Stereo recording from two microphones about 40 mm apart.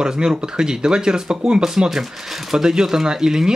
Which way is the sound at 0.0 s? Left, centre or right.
Centre.